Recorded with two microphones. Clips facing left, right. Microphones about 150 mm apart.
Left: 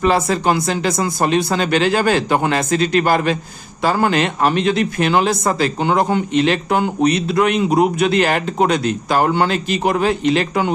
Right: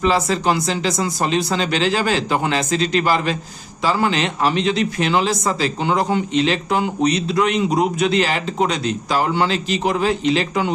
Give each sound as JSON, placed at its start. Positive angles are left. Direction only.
{"t": 0.0, "sound": "a man's voice", "side_deg": 50}